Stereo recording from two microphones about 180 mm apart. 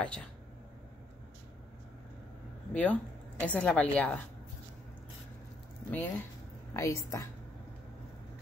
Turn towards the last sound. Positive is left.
turn(degrees=15)  # may be behind; listen again after turning